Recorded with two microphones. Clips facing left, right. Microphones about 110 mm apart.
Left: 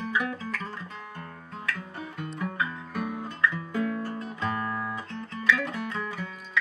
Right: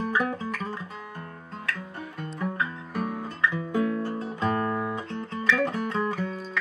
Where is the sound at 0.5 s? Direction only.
15° right (ahead or behind).